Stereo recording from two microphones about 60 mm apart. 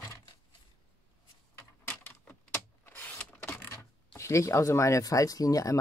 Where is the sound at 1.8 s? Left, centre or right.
Left.